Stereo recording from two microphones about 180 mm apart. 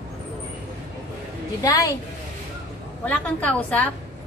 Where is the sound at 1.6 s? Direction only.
20° left (ahead or behind).